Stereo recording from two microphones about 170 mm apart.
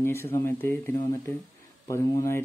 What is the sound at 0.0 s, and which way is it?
Speech, 15° left (ahead or behind).